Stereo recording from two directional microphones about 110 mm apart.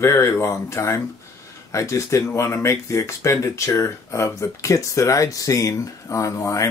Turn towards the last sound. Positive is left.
turn(degrees=30)  # may be behind; listen again after turning